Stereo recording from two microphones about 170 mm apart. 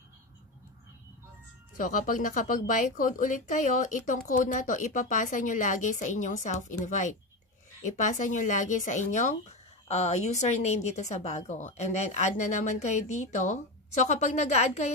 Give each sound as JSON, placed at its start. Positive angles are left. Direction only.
{"t": 1.8, "sound": "a woman's voice", "side_deg": 50}